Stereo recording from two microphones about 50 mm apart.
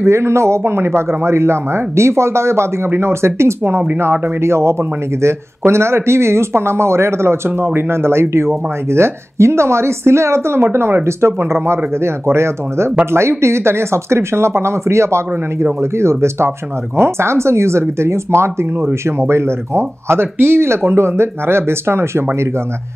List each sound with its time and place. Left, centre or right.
0.0 s speech: right